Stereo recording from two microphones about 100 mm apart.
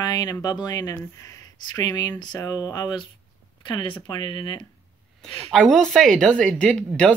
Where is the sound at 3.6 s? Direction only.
55° left (ahead or behind).